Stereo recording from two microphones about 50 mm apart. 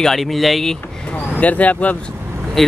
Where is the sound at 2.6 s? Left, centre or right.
Centre.